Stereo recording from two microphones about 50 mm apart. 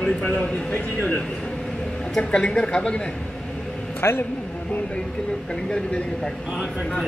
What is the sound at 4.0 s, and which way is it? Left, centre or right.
Speech, left.